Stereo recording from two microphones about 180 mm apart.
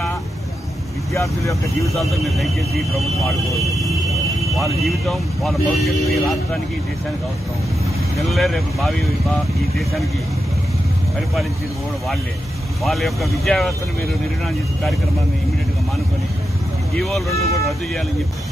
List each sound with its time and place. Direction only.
1.1 s speech: 15° left (ahead or behind)
2.0 s speech: centre (ahead or behind)
8.2 s speech: centre (ahead or behind)
12.8 s speech: centre (ahead or behind)
16.9 s speech: centre (ahead or behind)